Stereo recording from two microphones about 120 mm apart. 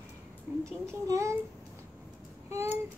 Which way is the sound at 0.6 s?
25° right (ahead or behind).